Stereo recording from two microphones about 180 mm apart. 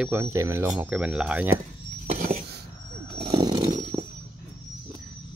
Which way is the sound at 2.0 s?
45° right (ahead or behind).